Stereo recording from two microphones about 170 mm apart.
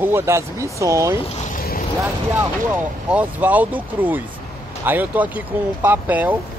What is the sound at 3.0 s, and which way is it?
Speech, 10° right (ahead or behind).